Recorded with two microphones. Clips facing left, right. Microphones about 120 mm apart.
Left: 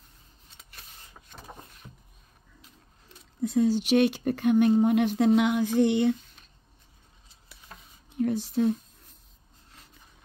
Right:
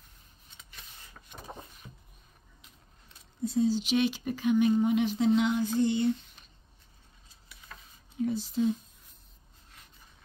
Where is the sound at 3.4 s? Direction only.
65° left (ahead or behind).